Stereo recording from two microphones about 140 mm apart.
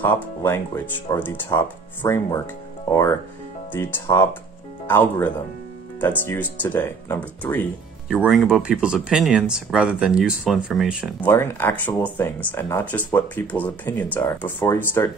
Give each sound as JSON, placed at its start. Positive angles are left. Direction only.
{"t": 0.0, "sound": "speech", "side_deg": 15}
{"t": 8.1, "sound": "speech", "side_deg": 0}
{"t": 11.1, "sound": "speech", "side_deg": 15}